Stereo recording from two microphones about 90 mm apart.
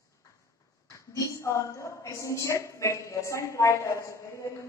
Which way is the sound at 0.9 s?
35° left (ahead or behind).